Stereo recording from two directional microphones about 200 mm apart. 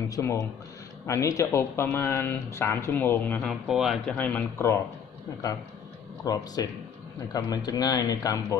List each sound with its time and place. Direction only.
0.1 s speech: 15° left (ahead or behind)
6.2 s speech: 20° left (ahead or behind)